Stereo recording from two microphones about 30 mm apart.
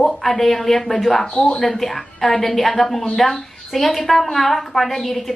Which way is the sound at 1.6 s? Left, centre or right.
Centre.